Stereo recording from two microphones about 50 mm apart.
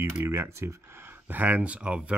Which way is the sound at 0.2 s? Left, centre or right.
Right.